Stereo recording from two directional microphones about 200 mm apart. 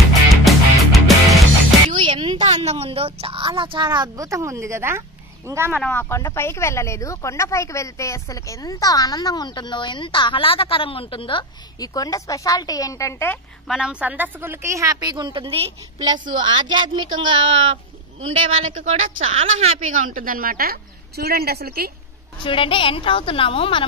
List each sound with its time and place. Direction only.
0.5 s music: centre (ahead or behind)
2.0 s a sound: 25° right (ahead or behind)
5.7 s speech: 10° left (ahead or behind)
13.7 s a woman's voice: 5° right (ahead or behind); by 21.9 s 50° right (ahead or behind)
22.4 s a woman's voice: 25° left (ahead or behind)